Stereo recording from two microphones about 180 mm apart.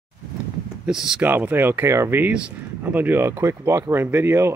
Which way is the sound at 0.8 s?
5° right (ahead or behind).